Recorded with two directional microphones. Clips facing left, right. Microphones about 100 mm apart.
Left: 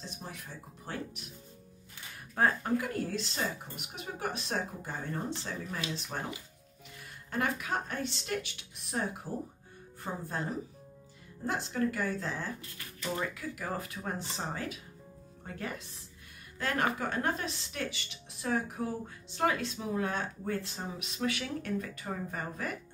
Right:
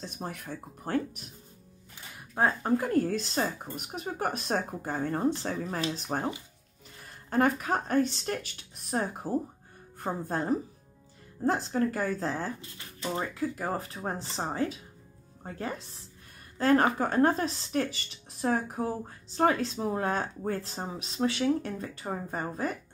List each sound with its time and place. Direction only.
0.0 s speech: 55° right (ahead or behind)
2.6 s speech: 40° right (ahead or behind)
7.2 s speech: 40° right (ahead or behind)